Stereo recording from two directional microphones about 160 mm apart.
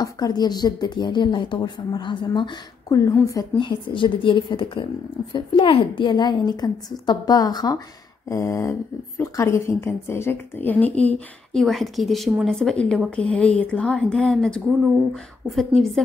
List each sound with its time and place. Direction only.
0.0 s a woman's voice: 25° left (ahead or behind); by 16.0 s centre (ahead or behind)